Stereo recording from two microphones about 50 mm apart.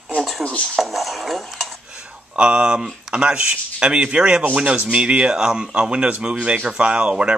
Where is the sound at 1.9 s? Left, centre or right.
Right.